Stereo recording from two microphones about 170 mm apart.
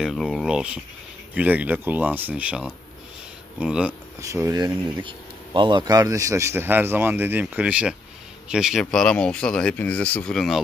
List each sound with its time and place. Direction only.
0.0 s speech: centre (ahead or behind)
4.2 s speech: 20° right (ahead or behind)
5.0 s speech: 30° right (ahead or behind); by 10.6 s centre (ahead or behind)